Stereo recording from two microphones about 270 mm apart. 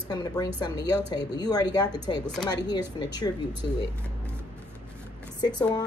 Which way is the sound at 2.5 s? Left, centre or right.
Centre.